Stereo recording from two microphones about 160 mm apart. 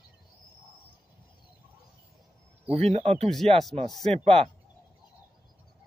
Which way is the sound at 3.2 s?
Centre (ahead or behind).